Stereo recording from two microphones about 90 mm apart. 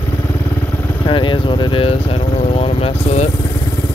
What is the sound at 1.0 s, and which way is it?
Speech, 65° left (ahead or behind).